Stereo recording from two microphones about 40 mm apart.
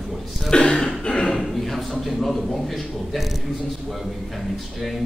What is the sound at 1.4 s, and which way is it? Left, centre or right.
A man's voice, centre.